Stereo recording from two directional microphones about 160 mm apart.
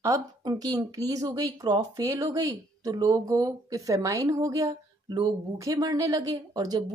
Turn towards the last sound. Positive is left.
turn(degrees=-25)  # may be behind; listen again after turning